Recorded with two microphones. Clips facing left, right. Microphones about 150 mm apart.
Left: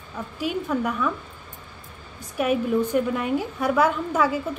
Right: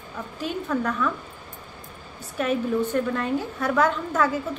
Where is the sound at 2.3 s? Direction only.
10° left (ahead or behind).